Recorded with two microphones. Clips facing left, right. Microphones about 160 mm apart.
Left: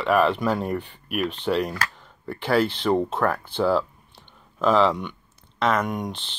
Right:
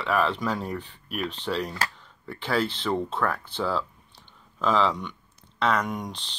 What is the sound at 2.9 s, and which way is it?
Speech, 30° left (ahead or behind).